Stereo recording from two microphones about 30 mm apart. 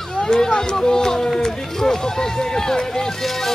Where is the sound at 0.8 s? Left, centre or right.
Left.